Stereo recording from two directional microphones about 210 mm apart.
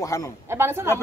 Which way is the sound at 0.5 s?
10° right (ahead or behind).